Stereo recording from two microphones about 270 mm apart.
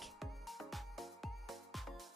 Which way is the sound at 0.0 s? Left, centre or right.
Centre.